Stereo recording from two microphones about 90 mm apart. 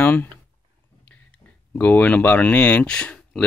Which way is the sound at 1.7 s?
20° left (ahead or behind).